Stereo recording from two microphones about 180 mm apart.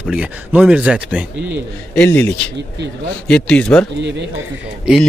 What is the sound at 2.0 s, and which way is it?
Speech, 10° left (ahead or behind).